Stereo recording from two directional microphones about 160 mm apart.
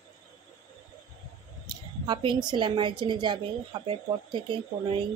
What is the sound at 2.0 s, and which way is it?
Speech, 30° right (ahead or behind).